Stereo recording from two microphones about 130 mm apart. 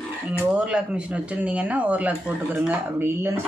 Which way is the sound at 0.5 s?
10° right (ahead or behind).